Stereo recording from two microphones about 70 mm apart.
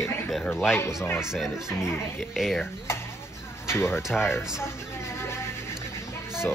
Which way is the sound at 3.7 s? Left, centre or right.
Left.